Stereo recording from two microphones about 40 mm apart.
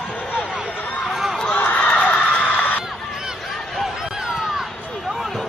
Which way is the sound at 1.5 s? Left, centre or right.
Left.